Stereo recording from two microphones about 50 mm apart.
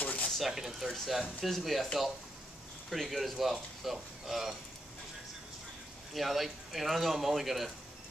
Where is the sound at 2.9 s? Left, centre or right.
Centre.